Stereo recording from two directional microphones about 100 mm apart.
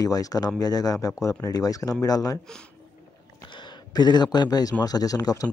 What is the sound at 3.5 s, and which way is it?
Speech, 50° left (ahead or behind).